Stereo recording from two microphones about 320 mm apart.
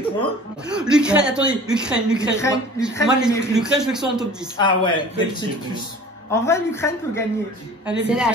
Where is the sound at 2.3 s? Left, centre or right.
Centre.